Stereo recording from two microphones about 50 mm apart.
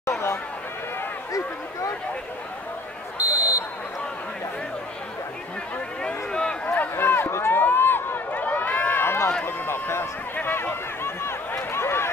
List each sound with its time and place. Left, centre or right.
3.2 s buzzer: right
6.0 s a sound: centre
6.6 s a sound: left
7.0 s run: left
7.6 s run: left
9.0 s run: left
9.7 s a sound: left
10.3 s speech: left
11.5 s run: left